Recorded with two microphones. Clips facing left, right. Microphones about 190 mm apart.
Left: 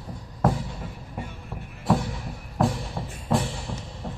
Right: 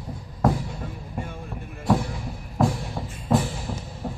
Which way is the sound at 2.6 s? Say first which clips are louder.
Right 2 dB; centre (ahead or behind).